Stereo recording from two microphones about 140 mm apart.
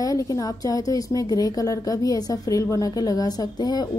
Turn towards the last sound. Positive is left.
turn(degrees=30)  # may be behind; listen again after turning